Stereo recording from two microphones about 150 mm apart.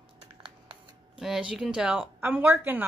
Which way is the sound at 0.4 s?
35° right (ahead or behind).